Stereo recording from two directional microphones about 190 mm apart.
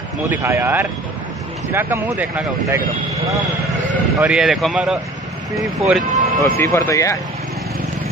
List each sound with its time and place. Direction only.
0.3 s speech: 10° right (ahead or behind)
4.2 s speech: 5° right (ahead or behind)
6.6 s speech: 15° left (ahead or behind)